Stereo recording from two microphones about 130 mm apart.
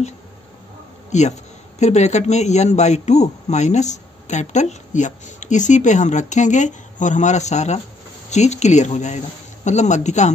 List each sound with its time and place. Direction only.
1.1 s a man's voice: 65° left (ahead or behind)